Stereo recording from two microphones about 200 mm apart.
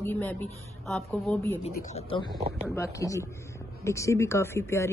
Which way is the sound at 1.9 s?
25° left (ahead or behind).